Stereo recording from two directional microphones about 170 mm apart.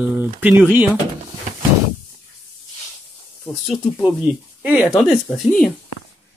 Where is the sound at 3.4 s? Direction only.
Centre (ahead or behind).